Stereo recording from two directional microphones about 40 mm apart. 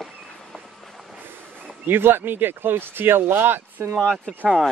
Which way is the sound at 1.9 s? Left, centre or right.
Right.